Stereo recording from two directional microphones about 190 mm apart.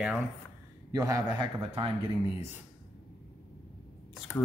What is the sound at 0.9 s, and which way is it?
Speech, 15° right (ahead or behind).